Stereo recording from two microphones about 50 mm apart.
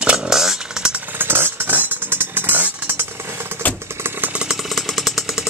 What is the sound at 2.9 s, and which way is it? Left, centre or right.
Vehicle, right.